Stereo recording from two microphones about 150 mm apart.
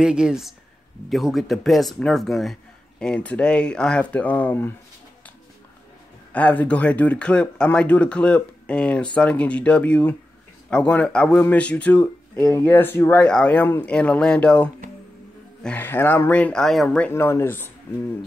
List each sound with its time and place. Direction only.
0.0 s speech: 5° right (ahead or behind); by 4.7 s 15° left (ahead or behind)
6.3 s speech: 10° left (ahead or behind)
17.1 s speech: 15° left (ahead or behind)